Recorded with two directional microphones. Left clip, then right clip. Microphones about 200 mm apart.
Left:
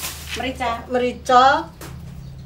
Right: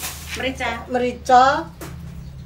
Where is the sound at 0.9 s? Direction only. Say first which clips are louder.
Right 1 dB; centre (ahead or behind).